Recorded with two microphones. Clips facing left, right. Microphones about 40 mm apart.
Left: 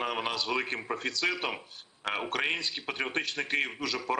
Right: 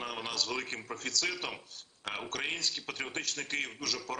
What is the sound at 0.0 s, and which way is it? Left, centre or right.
A man's voice, left.